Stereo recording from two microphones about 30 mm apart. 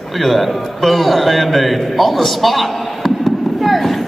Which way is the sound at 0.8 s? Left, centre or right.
Centre.